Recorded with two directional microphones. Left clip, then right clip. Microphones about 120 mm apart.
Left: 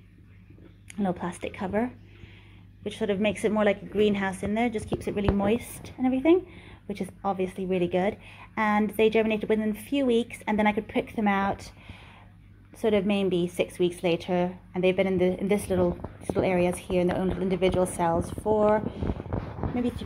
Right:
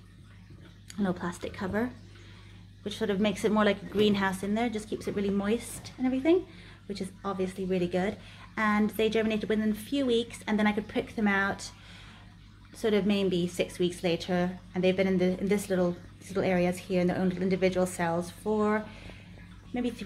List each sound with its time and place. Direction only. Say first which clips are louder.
0.8 s a woman's voice: left 3 dB; 25° left (ahead or behind)
3.0 s speech: left 2 dB; 5° left (ahead or behind)
4.6 s a woman's voice: left 4 dB; 25° left (ahead or behind)